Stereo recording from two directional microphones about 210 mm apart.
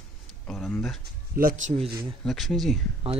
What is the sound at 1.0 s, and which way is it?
Speech, 45° right (ahead or behind).